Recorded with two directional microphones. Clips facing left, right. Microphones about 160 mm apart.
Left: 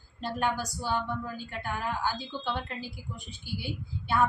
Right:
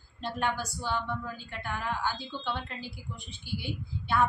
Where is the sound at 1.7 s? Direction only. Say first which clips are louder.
Left 1 dB; 10° left (ahead or behind).